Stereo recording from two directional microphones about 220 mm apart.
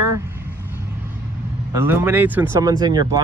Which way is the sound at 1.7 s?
10° right (ahead or behind).